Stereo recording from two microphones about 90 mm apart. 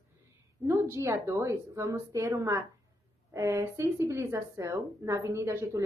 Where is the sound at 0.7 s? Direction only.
30° right (ahead or behind).